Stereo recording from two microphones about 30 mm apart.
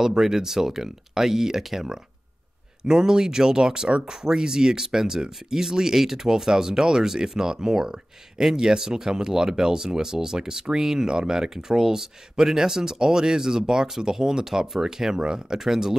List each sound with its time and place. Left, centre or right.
0.0 s speech: centre
2.8 s speech: right
15.6 s speech: centre